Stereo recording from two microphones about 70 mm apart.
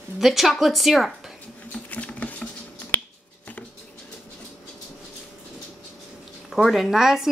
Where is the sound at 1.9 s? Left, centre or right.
Centre.